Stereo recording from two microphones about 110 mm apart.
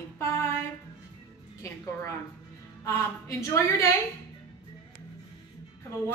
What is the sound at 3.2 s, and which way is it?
Speech, 30° left (ahead or behind).